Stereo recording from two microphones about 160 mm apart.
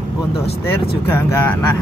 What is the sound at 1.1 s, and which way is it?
Speech, 15° left (ahead or behind).